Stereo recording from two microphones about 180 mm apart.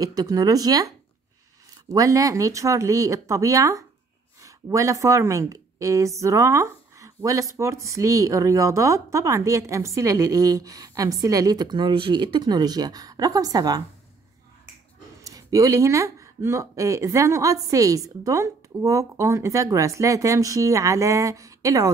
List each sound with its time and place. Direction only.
0.0 s a woman's voice: 20° right (ahead or behind)
15.2 s a woman's voice: 20° right (ahead or behind)